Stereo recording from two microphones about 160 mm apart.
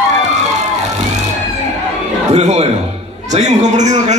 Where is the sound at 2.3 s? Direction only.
45° right (ahead or behind).